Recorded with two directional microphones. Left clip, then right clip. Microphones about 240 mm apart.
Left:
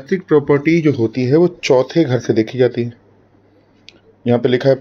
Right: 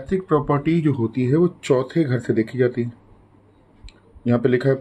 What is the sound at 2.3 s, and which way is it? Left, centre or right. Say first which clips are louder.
Speech: left 4 dB; centre.